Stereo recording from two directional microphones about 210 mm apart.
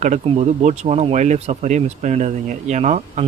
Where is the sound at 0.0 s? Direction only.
30° right (ahead or behind).